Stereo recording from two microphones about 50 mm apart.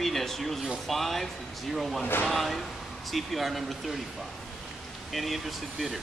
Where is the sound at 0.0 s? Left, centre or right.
Centre.